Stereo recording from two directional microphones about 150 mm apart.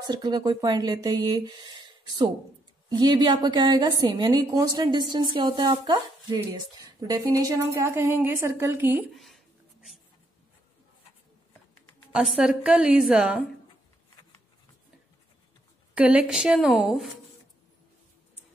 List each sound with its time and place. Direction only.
0.0 s a woman's voice: 25° right (ahead or behind)
2.9 s a woman's voice: 30° right (ahead or behind)
9.1 s a sound: centre (ahead or behind)
12.1 s a woman's voice: 5° right (ahead or behind)
15.9 s a woman's voice: 5° right (ahead or behind)